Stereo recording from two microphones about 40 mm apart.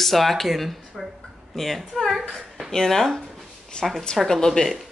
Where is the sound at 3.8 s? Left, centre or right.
Left.